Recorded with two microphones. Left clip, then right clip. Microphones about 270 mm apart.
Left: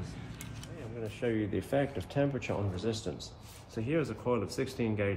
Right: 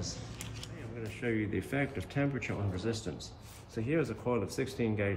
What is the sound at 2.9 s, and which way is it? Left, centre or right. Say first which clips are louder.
Speech: left 1 dB; left.